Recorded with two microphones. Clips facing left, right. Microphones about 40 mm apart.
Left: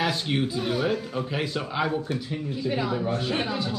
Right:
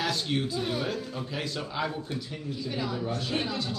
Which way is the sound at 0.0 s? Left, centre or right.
Centre.